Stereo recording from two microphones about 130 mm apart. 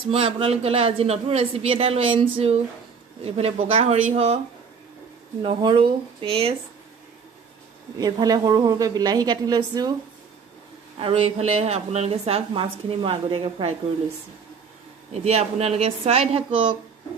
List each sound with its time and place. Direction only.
0.1 s a woman's voice: 50° right (ahead or behind)
5.6 s a woman's voice: 40° right (ahead or behind)
8.0 s a woman's voice: 30° right (ahead or behind)
11.0 s a woman's voice: 45° right (ahead or behind)
15.1 s a woman's voice: 55° right (ahead or behind)